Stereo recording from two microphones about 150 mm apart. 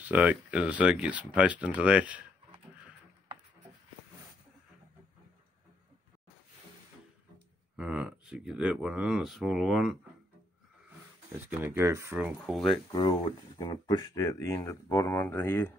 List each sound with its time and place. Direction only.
0.0 s speech: 10° right (ahead or behind)
7.7 s speech: 5° right (ahead or behind)
11.5 s speech: 15° right (ahead or behind)
12.5 s speech: centre (ahead or behind)
13.6 s speech: 30° left (ahead or behind)
14.1 s speech: 20° left (ahead or behind)